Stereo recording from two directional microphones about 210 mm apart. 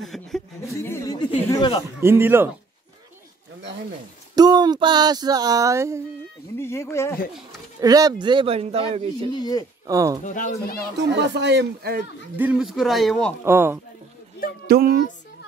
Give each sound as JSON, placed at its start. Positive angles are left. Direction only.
{"t": 0.0, "sound": "a sound", "side_deg": 0}
{"t": 0.7, "sound": "a sound", "side_deg": 15}
{"t": 1.5, "sound": "speech", "side_deg": 20}
{"t": 2.0, "sound": "speech", "side_deg": -10}
{"t": 4.4, "sound": "a sound", "side_deg": -20}
{"t": 6.5, "sound": "speech", "side_deg": 10}
{"t": 7.8, "sound": "a sound", "side_deg": -15}
{"t": 9.3, "sound": "speech", "side_deg": 20}
{"t": 9.8, "sound": "speech", "side_deg": -15}
{"t": 10.2, "sound": "speech", "side_deg": 35}
{"t": 11.0, "sound": "speech", "side_deg": -55}
{"t": 12.4, "sound": "speech", "side_deg": -5}
{"t": 13.5, "sound": "speech", "side_deg": -10}
{"t": 14.7, "sound": "speech", "side_deg": -45}